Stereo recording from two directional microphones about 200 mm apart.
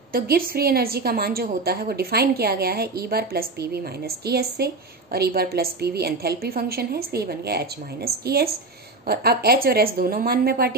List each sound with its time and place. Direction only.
0.1 s a woman's voice: 50° right (ahead or behind)